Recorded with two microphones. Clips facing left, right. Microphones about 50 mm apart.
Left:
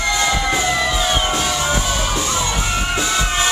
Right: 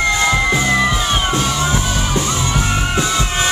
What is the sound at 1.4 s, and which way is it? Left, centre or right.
Music, centre.